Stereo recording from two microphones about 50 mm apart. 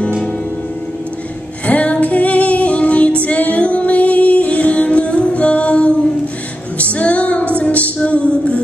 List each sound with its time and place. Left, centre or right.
1.7 s music: left